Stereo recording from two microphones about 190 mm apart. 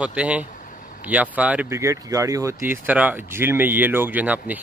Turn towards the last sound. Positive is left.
turn(degrees=-10)  # may be behind; listen again after turning